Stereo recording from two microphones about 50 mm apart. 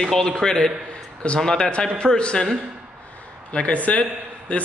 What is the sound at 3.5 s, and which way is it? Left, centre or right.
Speech, left.